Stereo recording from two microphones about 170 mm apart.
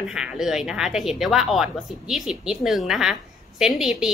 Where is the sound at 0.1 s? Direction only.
5° right (ahead or behind).